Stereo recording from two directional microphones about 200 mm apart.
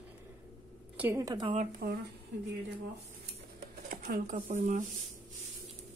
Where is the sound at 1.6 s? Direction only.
45° right (ahead or behind).